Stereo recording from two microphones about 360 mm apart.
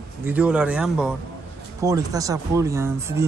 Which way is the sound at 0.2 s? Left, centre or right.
Centre.